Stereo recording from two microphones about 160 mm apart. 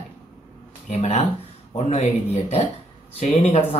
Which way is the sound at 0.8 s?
45° left (ahead or behind).